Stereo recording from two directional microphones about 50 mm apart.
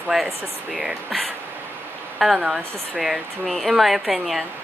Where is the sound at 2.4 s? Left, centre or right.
Centre.